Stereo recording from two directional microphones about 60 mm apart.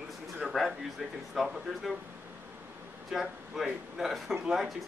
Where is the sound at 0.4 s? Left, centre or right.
Centre.